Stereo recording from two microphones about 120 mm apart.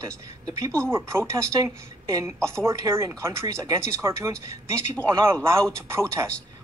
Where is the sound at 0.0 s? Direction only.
30° right (ahead or behind).